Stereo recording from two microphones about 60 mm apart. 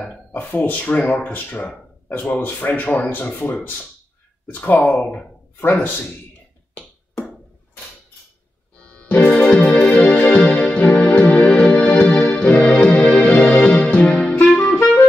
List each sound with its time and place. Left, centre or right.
0.3 s speech: left
4.6 s speech: left
8.8 s electric piano: left
13.2 s music: left